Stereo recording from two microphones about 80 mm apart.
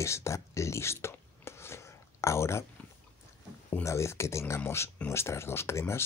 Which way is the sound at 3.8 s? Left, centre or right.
Left.